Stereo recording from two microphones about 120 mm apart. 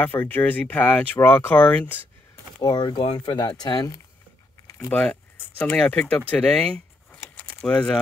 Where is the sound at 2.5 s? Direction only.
35° left (ahead or behind).